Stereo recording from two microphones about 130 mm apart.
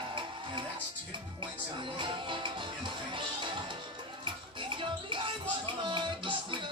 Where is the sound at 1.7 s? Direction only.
40° right (ahead or behind).